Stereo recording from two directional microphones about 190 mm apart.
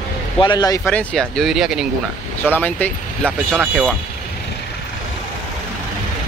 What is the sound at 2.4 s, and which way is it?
Speech, 10° left (ahead or behind).